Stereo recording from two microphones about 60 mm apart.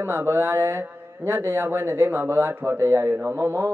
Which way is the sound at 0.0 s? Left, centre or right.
Right.